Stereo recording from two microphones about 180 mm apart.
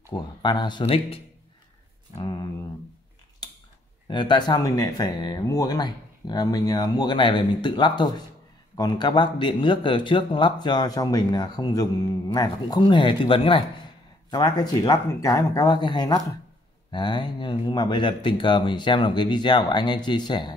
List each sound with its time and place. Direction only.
0.1 s speech: 25° left (ahead or behind)
4.1 s speech: 25° left (ahead or behind)